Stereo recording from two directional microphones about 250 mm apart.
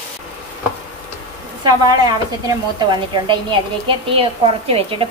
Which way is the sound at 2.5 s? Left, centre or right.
Centre.